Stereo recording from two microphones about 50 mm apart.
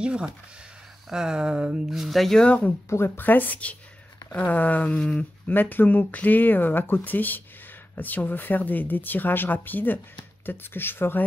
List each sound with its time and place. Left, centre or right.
0.0 s speech: right
1.9 s speech: centre
2.3 s speech: left
3.2 s speech: left
5.5 s speech: left